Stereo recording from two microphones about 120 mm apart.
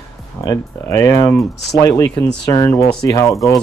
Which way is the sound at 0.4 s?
30° left (ahead or behind).